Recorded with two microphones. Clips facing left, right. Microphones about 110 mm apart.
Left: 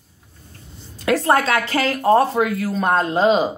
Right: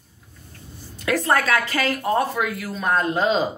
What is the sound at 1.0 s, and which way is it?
Speech, 25° left (ahead or behind).